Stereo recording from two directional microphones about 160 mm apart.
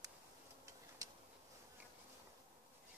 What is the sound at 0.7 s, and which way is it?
Tick-tock, 20° right (ahead or behind).